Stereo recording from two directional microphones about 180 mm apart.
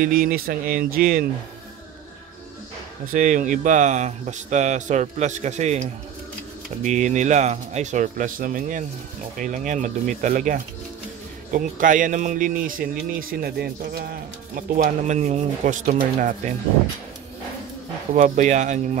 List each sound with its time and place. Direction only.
0.0 s speech: 55° right (ahead or behind)
3.1 s speech: 45° right (ahead or behind)
14.5 s speech: 45° right (ahead or behind)
18.1 s speech: 45° right (ahead or behind)